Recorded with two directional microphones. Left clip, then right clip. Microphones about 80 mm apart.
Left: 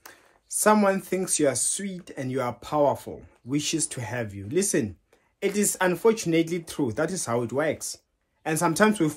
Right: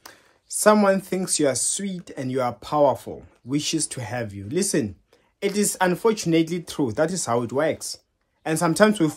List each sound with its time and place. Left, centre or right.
0.0 s speech: right